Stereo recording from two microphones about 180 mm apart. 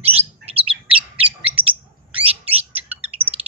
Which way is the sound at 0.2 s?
30° right (ahead or behind).